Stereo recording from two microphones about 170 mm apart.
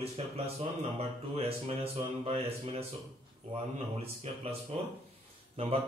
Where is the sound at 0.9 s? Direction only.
35° right (ahead or behind).